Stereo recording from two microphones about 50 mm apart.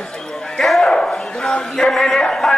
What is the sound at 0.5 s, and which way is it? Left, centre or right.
Dog, centre.